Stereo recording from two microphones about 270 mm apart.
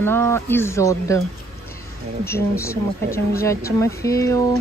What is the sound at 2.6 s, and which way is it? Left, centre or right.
Speech, centre.